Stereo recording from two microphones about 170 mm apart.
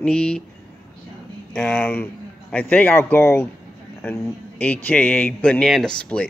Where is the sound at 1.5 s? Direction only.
10° left (ahead or behind).